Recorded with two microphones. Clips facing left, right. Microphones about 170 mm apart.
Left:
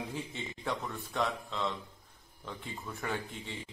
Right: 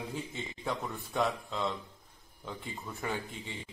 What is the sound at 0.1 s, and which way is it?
Speech, 5° right (ahead or behind).